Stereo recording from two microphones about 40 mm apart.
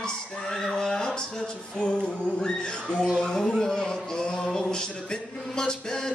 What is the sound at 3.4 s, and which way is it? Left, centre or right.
Speech, centre.